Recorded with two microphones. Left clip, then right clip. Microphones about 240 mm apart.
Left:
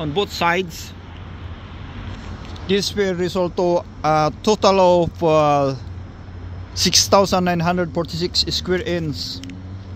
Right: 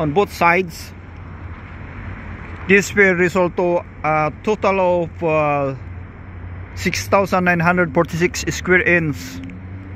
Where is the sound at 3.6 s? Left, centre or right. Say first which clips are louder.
Even; left.